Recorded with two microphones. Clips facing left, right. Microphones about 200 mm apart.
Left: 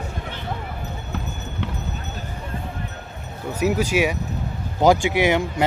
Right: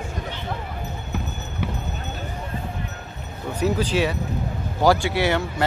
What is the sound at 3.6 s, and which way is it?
Speech, 10° left (ahead or behind).